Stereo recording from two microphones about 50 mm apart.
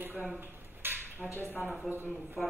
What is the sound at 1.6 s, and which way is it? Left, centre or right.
Speech, right.